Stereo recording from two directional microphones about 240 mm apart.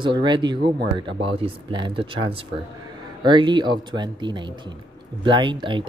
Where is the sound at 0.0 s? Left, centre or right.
Centre.